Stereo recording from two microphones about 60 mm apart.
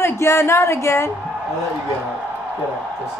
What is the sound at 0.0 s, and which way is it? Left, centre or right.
A woman's voice, left.